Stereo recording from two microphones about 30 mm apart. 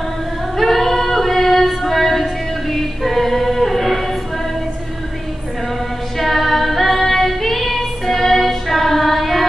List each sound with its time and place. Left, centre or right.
0.6 s female singing: centre
3.0 s singing: centre
6.1 s female singing: centre